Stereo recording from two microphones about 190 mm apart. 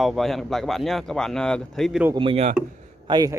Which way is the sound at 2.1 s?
30° right (ahead or behind).